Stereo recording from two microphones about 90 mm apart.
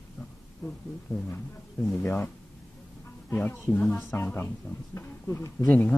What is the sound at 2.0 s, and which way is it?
Speech, 25° left (ahead or behind).